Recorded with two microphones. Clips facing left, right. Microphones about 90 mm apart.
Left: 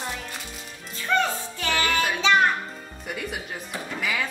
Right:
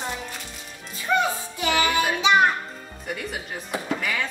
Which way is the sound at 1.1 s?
15° right (ahead or behind).